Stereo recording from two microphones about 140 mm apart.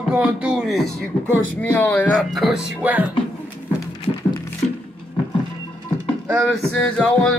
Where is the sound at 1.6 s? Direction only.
10° left (ahead or behind).